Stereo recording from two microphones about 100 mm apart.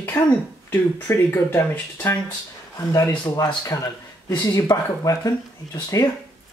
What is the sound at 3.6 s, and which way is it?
Speech, 35° left (ahead or behind).